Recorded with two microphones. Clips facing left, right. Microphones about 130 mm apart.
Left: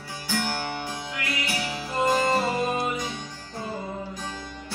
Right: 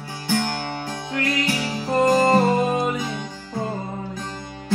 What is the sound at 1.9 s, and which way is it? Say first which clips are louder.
Music: right 6 dB; 50° right (ahead or behind).